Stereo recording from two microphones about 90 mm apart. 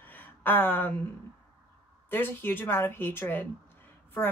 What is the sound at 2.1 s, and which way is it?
Speech, 25° left (ahead or behind).